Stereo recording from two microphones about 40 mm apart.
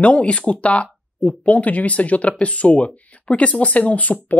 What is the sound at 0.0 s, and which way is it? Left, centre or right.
Speech, left.